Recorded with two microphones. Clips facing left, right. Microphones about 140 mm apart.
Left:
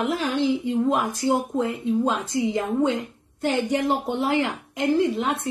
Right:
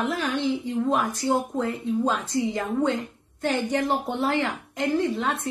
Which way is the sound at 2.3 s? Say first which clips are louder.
Left 2 dB; 20° left (ahead or behind).